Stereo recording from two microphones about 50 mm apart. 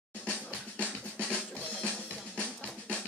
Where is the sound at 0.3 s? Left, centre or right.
Centre.